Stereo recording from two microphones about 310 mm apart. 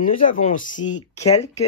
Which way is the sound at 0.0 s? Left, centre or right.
Left.